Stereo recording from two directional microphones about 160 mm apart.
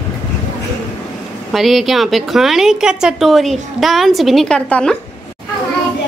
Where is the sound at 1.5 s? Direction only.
Centre (ahead or behind).